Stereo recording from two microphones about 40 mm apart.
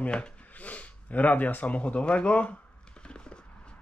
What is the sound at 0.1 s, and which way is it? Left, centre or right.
Speech, left.